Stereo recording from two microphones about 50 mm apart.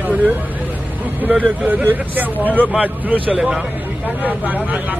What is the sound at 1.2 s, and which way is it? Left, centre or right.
Speech, right.